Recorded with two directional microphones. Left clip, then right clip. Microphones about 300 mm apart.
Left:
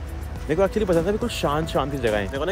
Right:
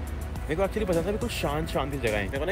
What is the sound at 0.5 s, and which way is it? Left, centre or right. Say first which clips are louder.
Speech: left 6 dB; centre.